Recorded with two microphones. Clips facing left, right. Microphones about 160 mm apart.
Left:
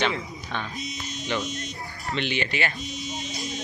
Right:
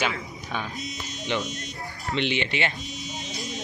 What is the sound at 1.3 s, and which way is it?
Speech, 20° right (ahead or behind).